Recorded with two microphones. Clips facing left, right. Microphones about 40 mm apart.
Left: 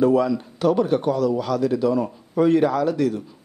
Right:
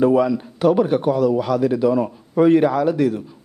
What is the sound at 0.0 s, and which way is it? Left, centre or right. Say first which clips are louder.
A man's voice: right 2 dB; right.